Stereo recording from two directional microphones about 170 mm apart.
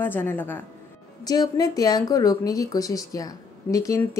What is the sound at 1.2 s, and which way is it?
A woman's voice, 25° left (ahead or behind).